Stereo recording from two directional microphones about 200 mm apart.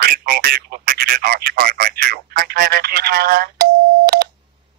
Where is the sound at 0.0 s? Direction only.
50° right (ahead or behind).